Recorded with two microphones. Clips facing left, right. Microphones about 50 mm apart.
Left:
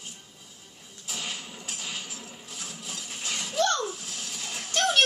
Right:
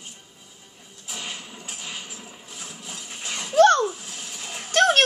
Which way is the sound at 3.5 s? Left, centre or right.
Right.